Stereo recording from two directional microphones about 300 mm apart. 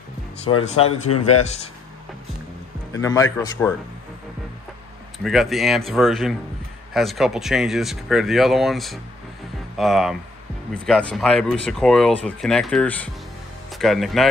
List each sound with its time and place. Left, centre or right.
0.7 s speech: centre
2.9 s a man's voice: centre
5.2 s speech: centre